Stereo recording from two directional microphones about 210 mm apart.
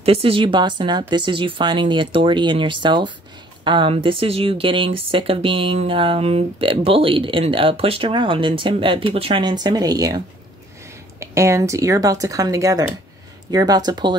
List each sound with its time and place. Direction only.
0.0 s speech: 25° right (ahead or behind)